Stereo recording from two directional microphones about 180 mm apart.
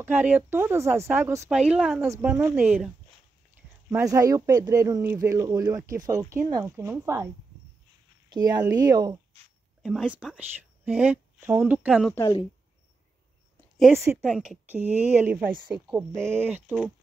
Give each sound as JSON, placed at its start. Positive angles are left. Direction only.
{"t": 0.0, "sound": "speech", "side_deg": -10}
{"t": 3.9, "sound": "speech", "side_deg": -20}
{"t": 8.3, "sound": "speech", "side_deg": -20}
{"t": 9.8, "sound": "speech", "side_deg": -5}
{"t": 14.1, "sound": "speech", "side_deg": -5}